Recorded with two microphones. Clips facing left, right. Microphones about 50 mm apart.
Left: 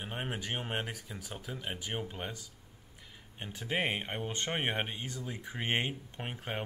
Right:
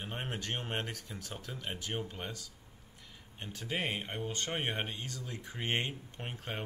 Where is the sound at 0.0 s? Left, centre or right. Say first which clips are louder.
Left 1 dB; centre.